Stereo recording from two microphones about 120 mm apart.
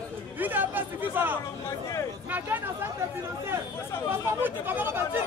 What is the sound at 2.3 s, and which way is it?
Speech, 15° right (ahead or behind).